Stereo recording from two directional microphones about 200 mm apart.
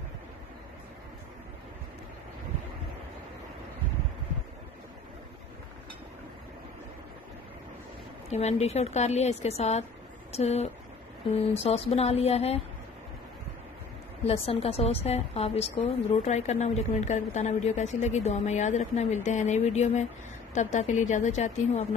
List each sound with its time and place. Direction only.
8.3 s a woman's voice: 35° left (ahead or behind)
11.9 s a woman's voice: 30° left (ahead or behind)
14.2 s a woman's voice: 30° left (ahead or behind)